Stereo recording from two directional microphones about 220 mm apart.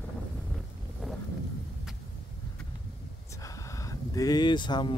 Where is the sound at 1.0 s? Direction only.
Centre (ahead or behind).